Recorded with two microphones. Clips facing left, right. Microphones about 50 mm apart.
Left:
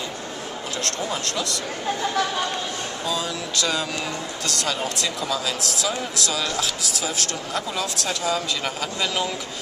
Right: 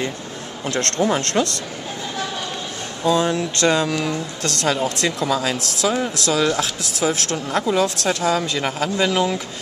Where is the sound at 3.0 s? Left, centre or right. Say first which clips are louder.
Right 11 dB; right.